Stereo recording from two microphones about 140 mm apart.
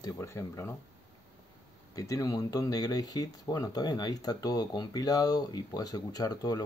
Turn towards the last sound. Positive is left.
turn(degrees=25)  # may be behind; listen again after turning